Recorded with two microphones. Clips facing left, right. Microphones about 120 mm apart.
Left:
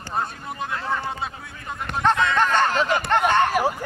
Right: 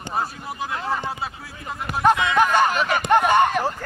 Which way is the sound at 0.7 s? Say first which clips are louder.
Right 1 dB; 15° right (ahead or behind).